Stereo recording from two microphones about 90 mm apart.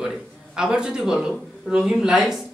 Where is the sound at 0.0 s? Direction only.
5° right (ahead or behind).